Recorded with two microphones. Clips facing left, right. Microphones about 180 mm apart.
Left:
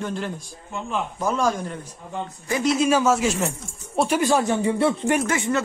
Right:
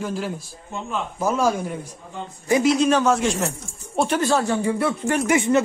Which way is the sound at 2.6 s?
5° left (ahead or behind).